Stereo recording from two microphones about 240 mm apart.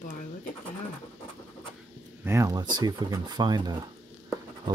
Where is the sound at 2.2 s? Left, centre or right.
Centre.